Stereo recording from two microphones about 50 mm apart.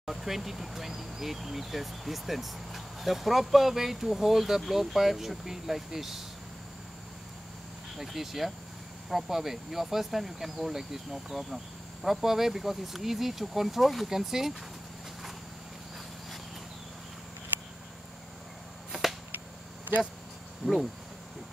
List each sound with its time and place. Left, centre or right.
0.0 s speech: centre
8.0 s speech: centre
18.9 s arrow: centre
20.6 s cricket: right